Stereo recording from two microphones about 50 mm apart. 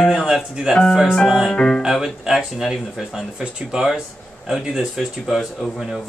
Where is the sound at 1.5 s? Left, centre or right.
Centre.